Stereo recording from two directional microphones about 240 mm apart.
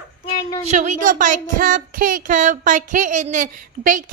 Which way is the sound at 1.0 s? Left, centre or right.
Right.